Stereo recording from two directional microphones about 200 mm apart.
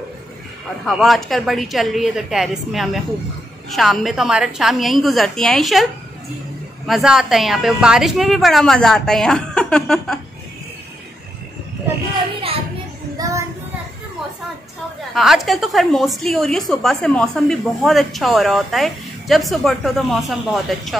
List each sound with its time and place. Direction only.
0.8 s a woman's voice: centre (ahead or behind)
6.9 s a woman's voice: centre (ahead or behind)
15.1 s a woman's voice: centre (ahead or behind)